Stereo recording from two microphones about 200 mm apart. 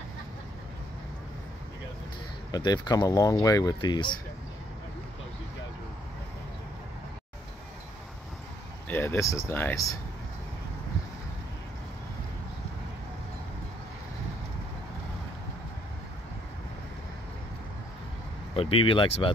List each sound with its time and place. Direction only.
2.5 s speech: 20° left (ahead or behind)
8.8 s speech: 10° left (ahead or behind)
18.5 s speech: 30° left (ahead or behind)